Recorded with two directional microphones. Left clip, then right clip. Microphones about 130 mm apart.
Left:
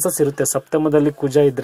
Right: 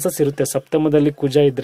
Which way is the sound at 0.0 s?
30° right (ahead or behind).